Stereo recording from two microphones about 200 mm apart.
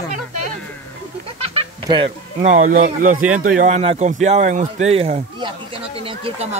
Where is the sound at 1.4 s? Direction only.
25° right (ahead or behind).